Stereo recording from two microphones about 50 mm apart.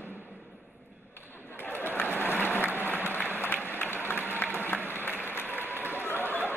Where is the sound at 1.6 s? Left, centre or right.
Left.